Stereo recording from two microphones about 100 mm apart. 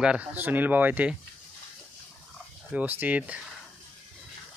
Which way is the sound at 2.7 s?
15° right (ahead or behind).